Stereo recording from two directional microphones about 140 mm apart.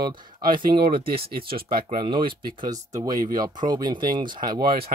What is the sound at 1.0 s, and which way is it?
Speech, 90° right.